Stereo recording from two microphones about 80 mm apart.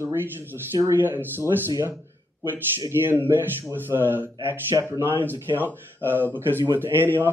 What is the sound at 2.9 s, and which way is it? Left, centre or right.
Speech, right.